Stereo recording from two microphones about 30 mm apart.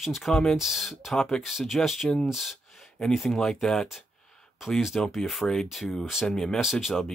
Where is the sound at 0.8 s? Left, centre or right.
Centre.